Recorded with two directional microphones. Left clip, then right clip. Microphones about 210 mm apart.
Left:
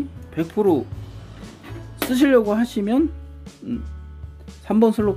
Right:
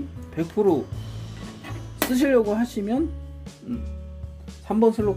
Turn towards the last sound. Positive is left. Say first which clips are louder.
# left 2 dB
turn(degrees=45)  # may be behind; listen again after turning